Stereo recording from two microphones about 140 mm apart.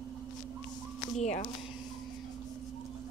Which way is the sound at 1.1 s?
55° left (ahead or behind).